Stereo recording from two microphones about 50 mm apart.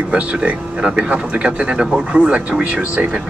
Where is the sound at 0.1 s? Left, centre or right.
Right.